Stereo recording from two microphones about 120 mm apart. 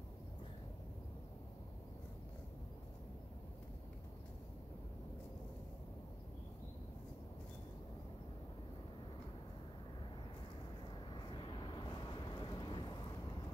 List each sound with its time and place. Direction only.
11.1 s vehicle: 40° left (ahead or behind)